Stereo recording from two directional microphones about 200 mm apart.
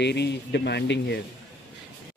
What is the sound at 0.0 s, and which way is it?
Speech, 60° left (ahead or behind).